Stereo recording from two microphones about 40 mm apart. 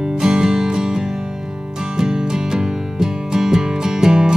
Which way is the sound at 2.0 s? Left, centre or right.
Centre.